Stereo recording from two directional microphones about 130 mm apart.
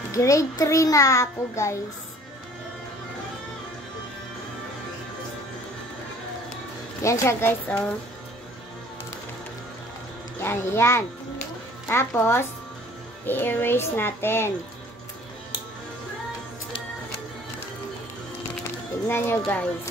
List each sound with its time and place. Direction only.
0.1 s a child's voice: 25° left (ahead or behind)
7.0 s a child's voice: 20° left (ahead or behind)
10.4 s a child's voice: 20° left (ahead or behind)
19.0 s speech: 20° left (ahead or behind)